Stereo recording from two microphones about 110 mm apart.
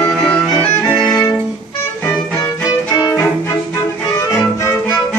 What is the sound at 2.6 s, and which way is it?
Violin, 35° left (ahead or behind).